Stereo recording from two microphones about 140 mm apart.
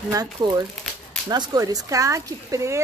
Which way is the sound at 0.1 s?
30° right (ahead or behind).